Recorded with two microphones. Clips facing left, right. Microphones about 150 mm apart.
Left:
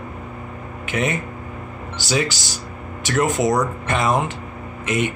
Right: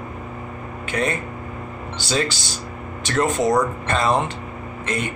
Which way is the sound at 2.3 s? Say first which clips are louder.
Even; 20° right (ahead or behind).